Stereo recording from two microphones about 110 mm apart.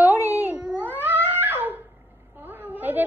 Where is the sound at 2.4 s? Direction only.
20° right (ahead or behind).